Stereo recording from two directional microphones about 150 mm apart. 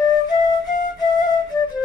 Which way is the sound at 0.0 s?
25° left (ahead or behind).